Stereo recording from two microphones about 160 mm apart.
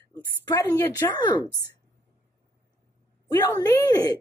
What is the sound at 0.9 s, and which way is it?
Speech, 25° left (ahead or behind).